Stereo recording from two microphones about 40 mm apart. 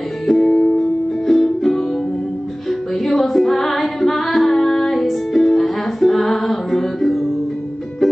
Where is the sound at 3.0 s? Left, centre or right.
Centre.